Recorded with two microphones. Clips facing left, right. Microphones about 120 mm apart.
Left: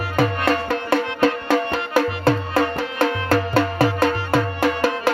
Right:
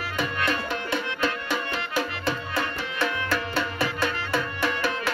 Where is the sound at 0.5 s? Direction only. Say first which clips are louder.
Left 8 dB; 70° left (ahead or behind).